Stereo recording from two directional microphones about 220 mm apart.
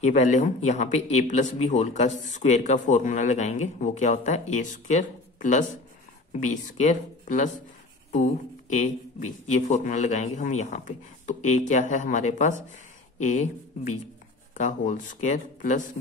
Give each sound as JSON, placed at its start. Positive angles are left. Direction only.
{"t": 0.0, "sound": "a man's voice", "side_deg": 30}